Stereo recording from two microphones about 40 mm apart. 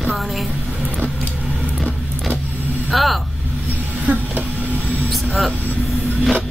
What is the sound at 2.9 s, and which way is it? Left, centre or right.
Speech, centre.